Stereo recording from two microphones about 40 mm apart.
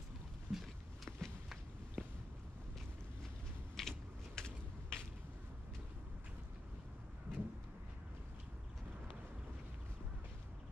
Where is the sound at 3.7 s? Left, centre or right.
Centre.